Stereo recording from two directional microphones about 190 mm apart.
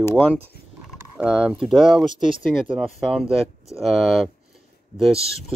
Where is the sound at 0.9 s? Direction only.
5° right (ahead or behind).